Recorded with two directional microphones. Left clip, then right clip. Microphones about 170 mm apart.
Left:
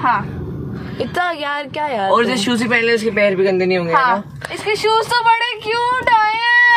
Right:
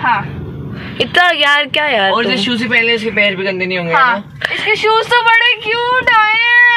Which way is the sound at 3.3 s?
15° left (ahead or behind).